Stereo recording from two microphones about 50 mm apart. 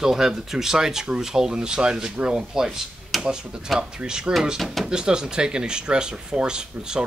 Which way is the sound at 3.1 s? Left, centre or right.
Centre.